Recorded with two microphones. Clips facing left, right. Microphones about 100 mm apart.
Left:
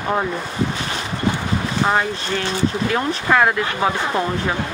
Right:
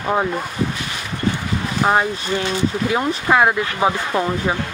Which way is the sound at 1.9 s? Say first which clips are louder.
Right 4 dB; 15° right (ahead or behind).